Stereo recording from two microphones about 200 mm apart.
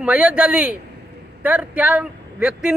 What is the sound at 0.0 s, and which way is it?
Speech, 5° right (ahead or behind).